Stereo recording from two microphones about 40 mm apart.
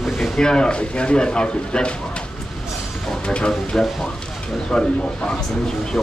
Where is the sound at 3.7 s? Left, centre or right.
Centre.